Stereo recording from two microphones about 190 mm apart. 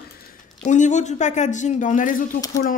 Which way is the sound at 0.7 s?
40° left (ahead or behind).